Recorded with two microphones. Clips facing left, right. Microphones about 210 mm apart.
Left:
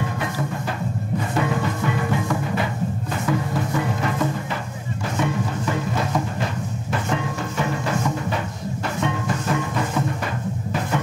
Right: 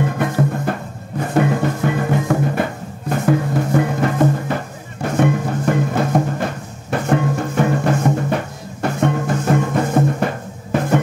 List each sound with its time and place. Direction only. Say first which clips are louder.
0.2 s music: right 7 dB; 50° right (ahead or behind)